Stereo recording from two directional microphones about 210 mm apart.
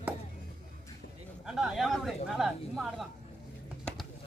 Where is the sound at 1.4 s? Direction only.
5° right (ahead or behind).